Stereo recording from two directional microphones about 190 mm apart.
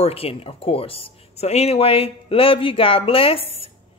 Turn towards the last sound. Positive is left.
turn(degrees=30)  # may be behind; listen again after turning